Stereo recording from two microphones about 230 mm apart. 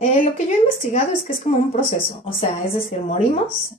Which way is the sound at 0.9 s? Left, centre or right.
Left.